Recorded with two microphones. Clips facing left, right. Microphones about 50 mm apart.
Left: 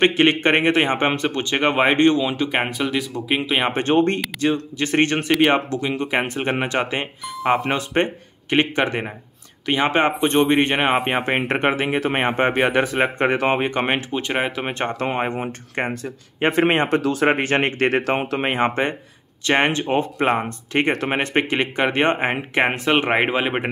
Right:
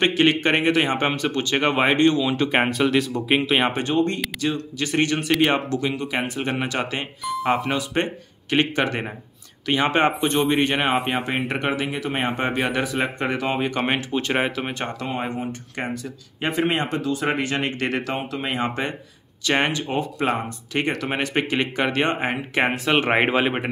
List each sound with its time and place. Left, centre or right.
0.0 s speech: left
1.6 s speech: centre
3.7 s speech: left
4.7 s speech: left
5.5 s speech: centre
5.9 s speech: left; by 10.1 s centre
10.2 s speech: left
13.7 s speech: left
14.7 s speech: left
19.4 s speech: left
21.5 s speech: centre
23.1 s speech: centre